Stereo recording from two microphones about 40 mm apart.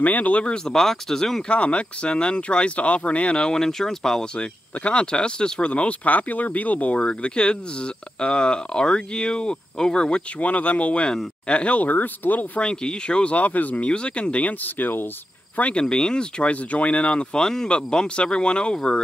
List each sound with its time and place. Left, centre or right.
0.0 s speech: left
0.7 s speech: centre
1.5 s speech: left; by 4.3 s centre
4.4 s speech: left
7.0 s speech: left
10.4 s speech: left
11.8 s speech: left
12.5 s speech: left
13.8 s speech: left
14.6 s speech: left
15.7 s speech: centre